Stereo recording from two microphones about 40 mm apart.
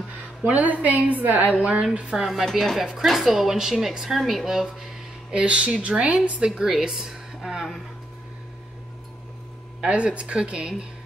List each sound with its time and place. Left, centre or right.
0.6 s a woman's voice: right
2.1 s speech: centre
5.3 s speech: right
6.4 s speech: centre
9.8 s speech: right